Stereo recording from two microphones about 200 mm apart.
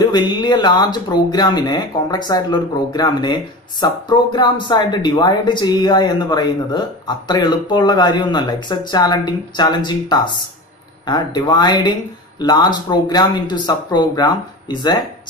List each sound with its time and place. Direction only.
0.0 s speech: 20° left (ahead or behind)